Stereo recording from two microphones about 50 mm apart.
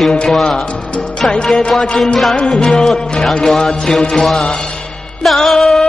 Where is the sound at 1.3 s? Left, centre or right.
Centre.